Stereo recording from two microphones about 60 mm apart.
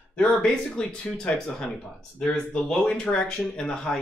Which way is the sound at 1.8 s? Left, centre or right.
Left.